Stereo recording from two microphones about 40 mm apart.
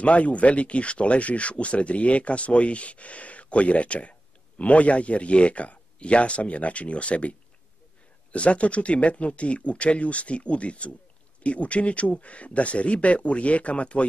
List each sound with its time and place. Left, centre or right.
0.0 s speech: left